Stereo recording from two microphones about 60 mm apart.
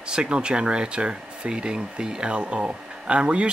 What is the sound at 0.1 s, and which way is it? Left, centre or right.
Speech, centre.